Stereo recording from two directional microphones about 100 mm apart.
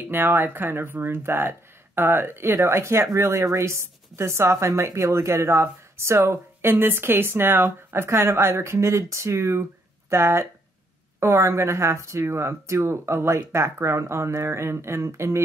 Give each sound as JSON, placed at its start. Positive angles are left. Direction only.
{"t": 0.0, "sound": "speech", "side_deg": -20}